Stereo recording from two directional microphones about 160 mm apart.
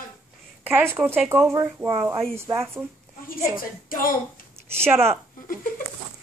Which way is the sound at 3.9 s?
60° left (ahead or behind).